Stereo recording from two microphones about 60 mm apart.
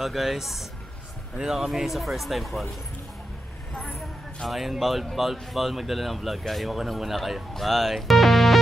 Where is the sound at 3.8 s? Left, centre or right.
Centre.